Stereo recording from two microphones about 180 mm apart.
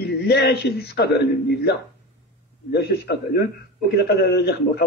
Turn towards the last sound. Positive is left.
turn(degrees=65)  # may be behind; listen again after turning